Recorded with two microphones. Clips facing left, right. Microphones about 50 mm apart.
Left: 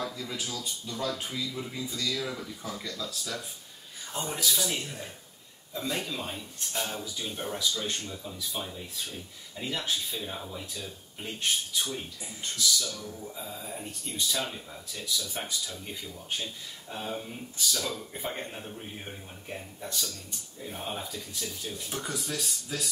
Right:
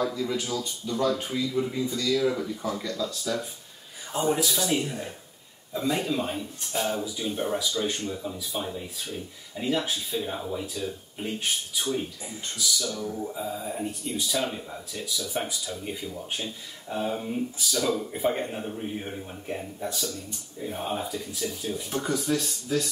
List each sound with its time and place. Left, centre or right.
0.3 s speech: centre
4.1 s speech: centre
13.0 s mantra: right
13.3 s speech: centre